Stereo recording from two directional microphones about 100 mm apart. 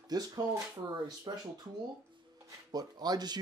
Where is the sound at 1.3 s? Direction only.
45° right (ahead or behind).